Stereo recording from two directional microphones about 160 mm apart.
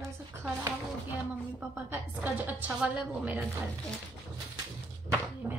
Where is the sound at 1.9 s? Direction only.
10° right (ahead or behind).